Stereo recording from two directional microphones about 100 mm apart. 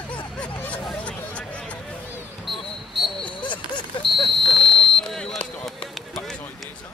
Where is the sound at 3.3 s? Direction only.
50° left (ahead or behind).